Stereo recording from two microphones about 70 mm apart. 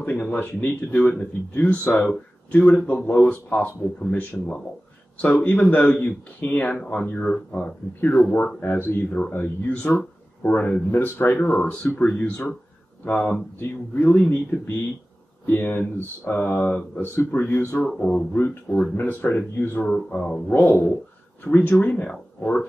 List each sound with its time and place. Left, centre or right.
0.0 s speech: left
1.0 s speech: centre; by 9.0 s left
9.1 s speech: left
14.5 s speech: centre
15.4 s speech: left
17.8 s speech: centre
18.9 s speech: left
20.4 s speech: left
21.5 s speech: left